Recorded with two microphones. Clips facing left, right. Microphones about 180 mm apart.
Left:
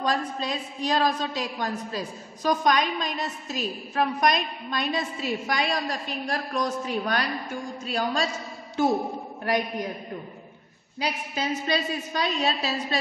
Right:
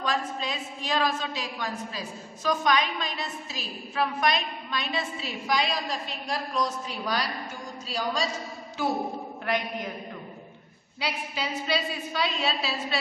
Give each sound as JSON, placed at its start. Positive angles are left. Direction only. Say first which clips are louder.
{"t": 0.0, "sound": "a woman's voice", "louder": "left 3 dB", "side_deg": 40}
{"t": 11.0, "sound": "a woman's voice", "louder": "left 3 dB", "side_deg": 45}